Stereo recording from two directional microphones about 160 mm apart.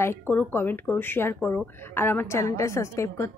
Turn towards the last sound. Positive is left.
turn(degrees=20)  # may be behind; listen again after turning